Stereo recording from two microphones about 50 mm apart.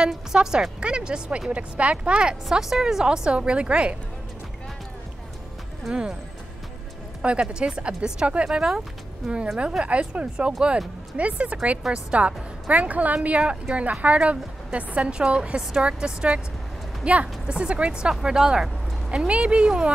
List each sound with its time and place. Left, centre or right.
0.1 s a woman's voice: centre
2.5 s a woman's voice: centre
5.9 s a woman's voice: centre
7.2 s a woman's voice: right
9.8 s a woman's voice: right
19.0 s a woman's voice: right